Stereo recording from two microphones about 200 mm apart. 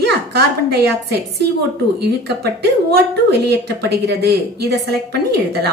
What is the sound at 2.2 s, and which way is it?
A woman's voice, 55° right (ahead or behind).